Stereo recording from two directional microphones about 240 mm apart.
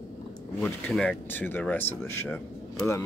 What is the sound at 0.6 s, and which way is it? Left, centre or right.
Speech, centre.